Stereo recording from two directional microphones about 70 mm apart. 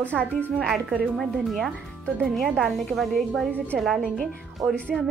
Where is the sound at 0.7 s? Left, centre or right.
Centre.